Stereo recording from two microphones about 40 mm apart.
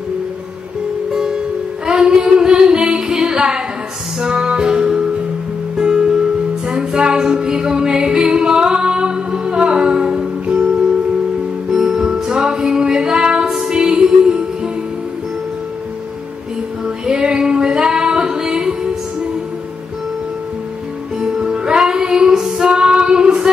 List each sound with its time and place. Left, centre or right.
1.1 s music: centre
1.9 s singing: centre
4.2 s music: right
16.8 s female singing: right
21.2 s music: centre
22.7 s female singing: right